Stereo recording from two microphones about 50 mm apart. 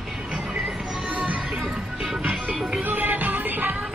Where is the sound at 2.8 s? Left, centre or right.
Right.